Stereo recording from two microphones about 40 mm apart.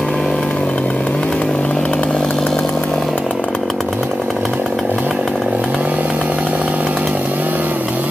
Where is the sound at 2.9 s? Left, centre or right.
Centre.